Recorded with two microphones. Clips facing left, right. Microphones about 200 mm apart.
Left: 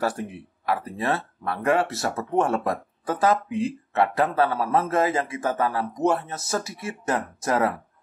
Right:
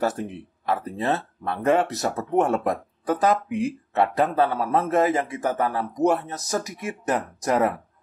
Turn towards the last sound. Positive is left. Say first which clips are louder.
# right 1 dB
turn(degrees=-15)  # may be behind; listen again after turning